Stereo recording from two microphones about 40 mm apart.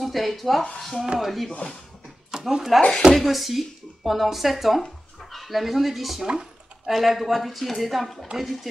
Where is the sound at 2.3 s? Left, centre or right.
Centre.